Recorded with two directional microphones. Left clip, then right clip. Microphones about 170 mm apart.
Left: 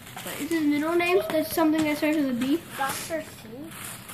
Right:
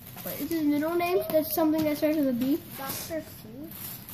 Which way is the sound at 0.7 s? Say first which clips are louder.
Left 4 dB; 55° right (ahead or behind).